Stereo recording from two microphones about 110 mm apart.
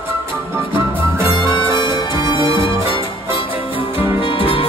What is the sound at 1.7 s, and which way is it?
Music, 45° left (ahead or behind).